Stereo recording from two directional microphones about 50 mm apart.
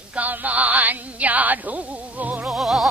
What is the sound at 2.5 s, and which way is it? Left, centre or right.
Music, centre.